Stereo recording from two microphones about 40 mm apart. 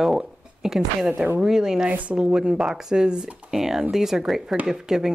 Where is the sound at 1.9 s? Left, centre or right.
Right; by 5.1 s centre.